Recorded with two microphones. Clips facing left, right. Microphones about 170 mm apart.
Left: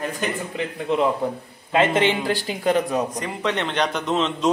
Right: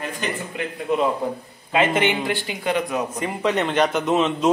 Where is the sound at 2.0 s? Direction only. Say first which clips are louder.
Left 1 dB; 35° left (ahead or behind).